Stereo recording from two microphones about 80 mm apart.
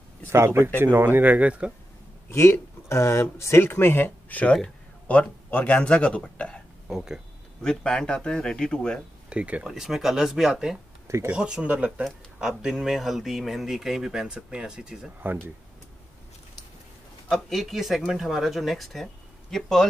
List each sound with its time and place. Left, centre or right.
0.3 s speech: right
2.3 s a man's voice: left; by 6.6 s centre
6.9 s speech: centre
7.6 s speech: centre
9.3 s speech: centre
11.1 s speech: right
11.3 s speech: centre
12.0 s speech: centre
17.3 s speech: centre